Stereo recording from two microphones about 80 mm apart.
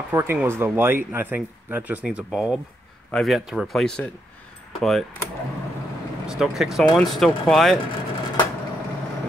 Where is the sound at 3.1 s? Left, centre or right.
Centre.